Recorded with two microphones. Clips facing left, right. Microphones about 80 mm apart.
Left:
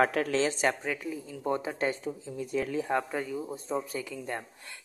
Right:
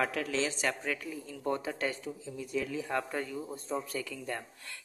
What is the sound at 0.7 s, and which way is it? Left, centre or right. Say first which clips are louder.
Speech: left 3 dB; centre.